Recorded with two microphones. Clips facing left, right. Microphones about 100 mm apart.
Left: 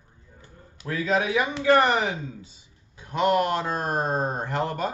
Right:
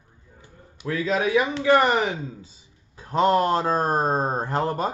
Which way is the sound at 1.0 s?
35° right (ahead or behind).